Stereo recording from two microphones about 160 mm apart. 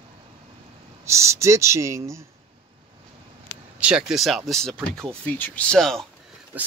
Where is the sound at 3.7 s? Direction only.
5° right (ahead or behind).